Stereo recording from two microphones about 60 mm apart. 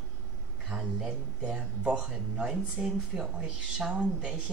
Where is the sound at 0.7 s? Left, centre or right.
Centre.